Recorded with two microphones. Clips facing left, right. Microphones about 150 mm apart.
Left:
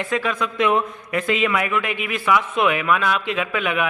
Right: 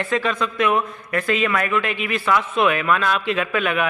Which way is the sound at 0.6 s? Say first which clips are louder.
Left 3 dB; 20° left (ahead or behind).